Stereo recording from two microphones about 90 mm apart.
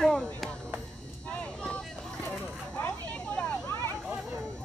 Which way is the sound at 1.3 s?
10° left (ahead or behind).